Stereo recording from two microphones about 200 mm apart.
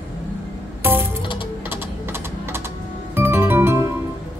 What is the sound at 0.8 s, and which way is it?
Music, 10° right (ahead or behind).